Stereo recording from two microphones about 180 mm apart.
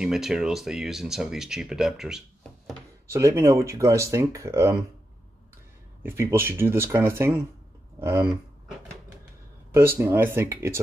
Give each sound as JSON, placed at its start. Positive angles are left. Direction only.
{"t": 0.0, "sound": "speech", "side_deg": -5}
{"t": 3.1, "sound": "speech", "side_deg": -15}
{"t": 6.0, "sound": "speech", "side_deg": -15}
{"t": 9.8, "sound": "speech", "side_deg": -10}